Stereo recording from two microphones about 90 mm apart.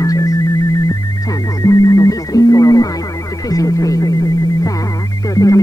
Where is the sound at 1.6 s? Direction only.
40° left (ahead or behind).